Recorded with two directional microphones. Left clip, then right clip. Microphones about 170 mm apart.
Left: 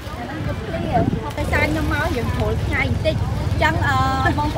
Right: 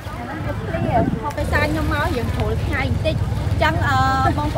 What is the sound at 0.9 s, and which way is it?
Speech, centre (ahead or behind).